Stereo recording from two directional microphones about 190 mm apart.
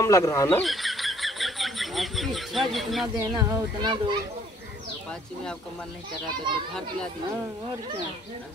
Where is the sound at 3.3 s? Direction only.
20° right (ahead or behind).